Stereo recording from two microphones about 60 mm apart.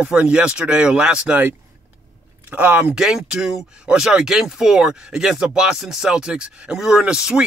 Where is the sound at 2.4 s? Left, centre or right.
Right.